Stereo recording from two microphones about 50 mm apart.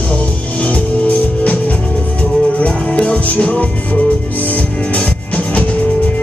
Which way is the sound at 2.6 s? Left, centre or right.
Left.